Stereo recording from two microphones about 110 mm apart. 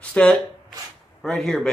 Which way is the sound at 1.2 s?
5° left (ahead or behind).